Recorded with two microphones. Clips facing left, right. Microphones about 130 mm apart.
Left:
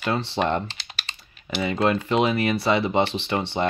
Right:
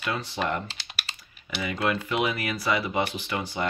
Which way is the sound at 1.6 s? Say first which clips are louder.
Left 5 dB; 35° left (ahead or behind).